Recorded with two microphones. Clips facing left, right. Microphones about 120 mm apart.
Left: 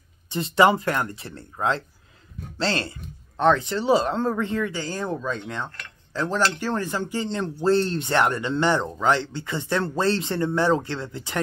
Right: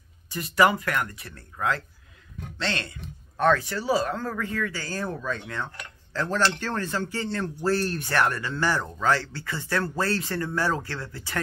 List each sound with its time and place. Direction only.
0.3 s speech: 25° left (ahead or behind)